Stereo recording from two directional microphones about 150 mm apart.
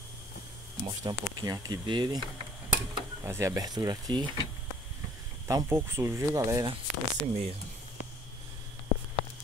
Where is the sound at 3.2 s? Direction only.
20° right (ahead or behind).